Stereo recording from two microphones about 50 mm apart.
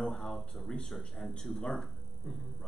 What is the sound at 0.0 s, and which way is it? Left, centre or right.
Speech, centre.